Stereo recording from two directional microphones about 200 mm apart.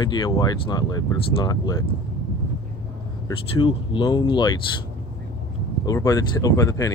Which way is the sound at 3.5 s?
25° left (ahead or behind).